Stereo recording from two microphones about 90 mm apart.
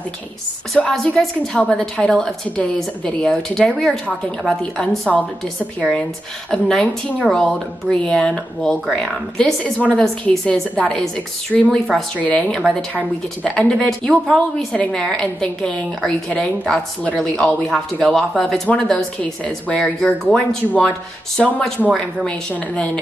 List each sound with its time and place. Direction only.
1.0 s a woman's voice: 5° left (ahead or behind)